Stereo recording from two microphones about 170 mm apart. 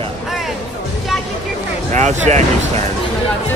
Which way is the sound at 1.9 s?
45° right (ahead or behind).